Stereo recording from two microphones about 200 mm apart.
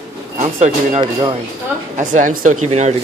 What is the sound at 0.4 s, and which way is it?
Speech, 35° right (ahead or behind).